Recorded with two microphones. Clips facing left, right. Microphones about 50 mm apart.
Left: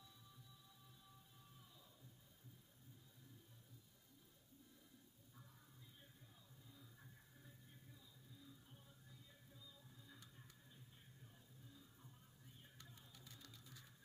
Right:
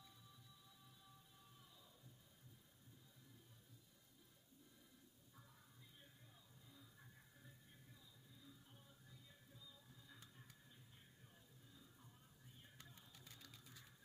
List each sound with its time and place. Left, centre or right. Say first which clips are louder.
5.3 s music: left 2 dB; centre
12.9 s music: left 1 dB; centre